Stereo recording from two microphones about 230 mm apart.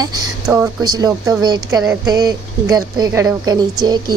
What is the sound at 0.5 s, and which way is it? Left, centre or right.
A woman's voice, centre.